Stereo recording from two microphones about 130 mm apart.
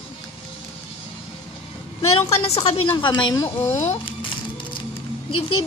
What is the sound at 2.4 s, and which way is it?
Speech, 45° left (ahead or behind).